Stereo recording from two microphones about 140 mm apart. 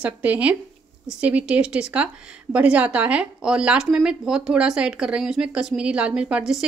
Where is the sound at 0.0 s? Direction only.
10° right (ahead or behind).